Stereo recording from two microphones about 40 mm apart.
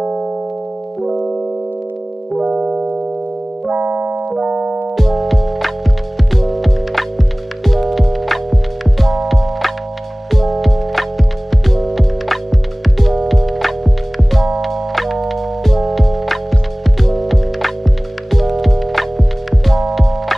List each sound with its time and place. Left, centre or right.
0.0 s music: right
2.5 s music: right
3.7 s keyboard: right
4.4 s music: right
4.9 s music: centre